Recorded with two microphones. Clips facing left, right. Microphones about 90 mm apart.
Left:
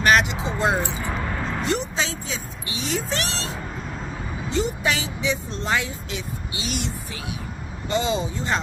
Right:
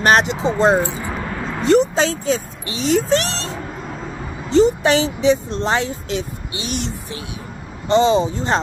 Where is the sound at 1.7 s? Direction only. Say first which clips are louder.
Right 14 dB; 40° right (ahead or behind).